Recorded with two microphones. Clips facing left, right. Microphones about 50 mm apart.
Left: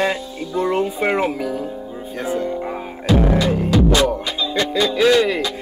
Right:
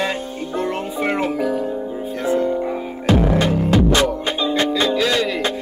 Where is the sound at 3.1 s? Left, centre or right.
Right.